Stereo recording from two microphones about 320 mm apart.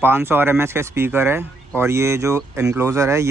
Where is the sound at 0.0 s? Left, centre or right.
Centre.